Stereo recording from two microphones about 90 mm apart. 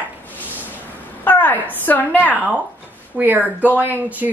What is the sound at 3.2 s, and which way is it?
Speech, 20° right (ahead or behind).